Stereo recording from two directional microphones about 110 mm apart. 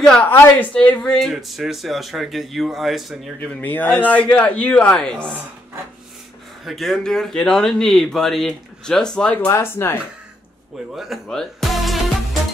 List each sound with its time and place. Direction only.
0.0 s speech: 5° left (ahead or behind)
0.3 s a man's voice: 15° left (ahead or behind); by 3.2 s centre (ahead or behind)
3.3 s speech: 15° left (ahead or behind)
6.6 s a man's voice: centre (ahead or behind)
9.5 s speech: 20° left (ahead or behind)
11.0 s music: centre (ahead or behind)